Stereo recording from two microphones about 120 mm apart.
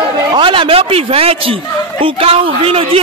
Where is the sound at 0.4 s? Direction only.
45° right (ahead or behind).